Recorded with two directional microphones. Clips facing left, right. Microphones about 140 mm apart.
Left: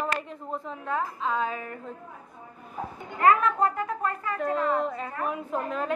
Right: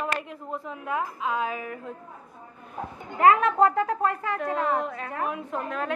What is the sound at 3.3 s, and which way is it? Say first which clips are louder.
Speech: right 4 dB; 85° right.